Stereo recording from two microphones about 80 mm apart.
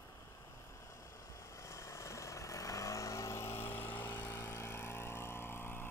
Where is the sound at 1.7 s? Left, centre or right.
Left.